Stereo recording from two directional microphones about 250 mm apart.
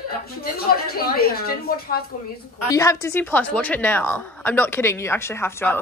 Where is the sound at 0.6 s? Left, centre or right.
Left.